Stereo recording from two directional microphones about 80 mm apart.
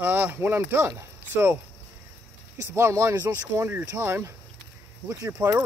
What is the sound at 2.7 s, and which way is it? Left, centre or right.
Speech, right.